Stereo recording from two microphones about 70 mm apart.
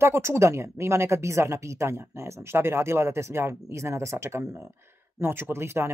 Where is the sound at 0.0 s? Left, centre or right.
Right.